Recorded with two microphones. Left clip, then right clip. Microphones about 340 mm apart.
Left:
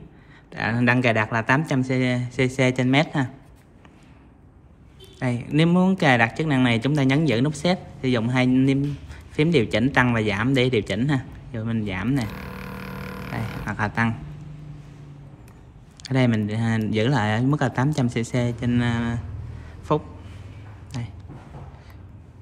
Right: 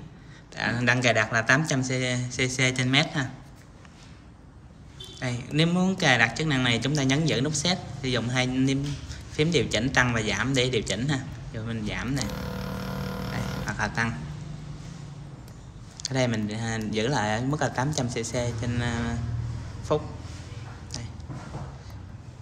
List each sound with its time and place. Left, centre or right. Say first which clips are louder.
0.5 s speech: left 3 dB; left
5.2 s speech: left 4 dB; centre
13.3 s a sound: left 4 dB; left
16.0 s speech: left 4 dB; left